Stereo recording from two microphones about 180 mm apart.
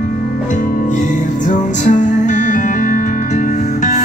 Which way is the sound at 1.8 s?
45° left (ahead or behind).